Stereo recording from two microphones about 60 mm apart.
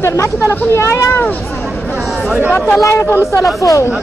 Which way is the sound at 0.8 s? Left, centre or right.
Left.